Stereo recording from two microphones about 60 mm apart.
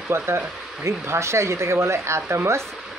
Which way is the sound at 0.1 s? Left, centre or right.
Right.